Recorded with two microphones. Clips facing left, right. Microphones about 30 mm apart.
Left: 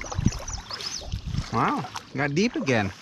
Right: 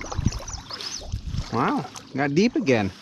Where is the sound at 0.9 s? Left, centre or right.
Centre.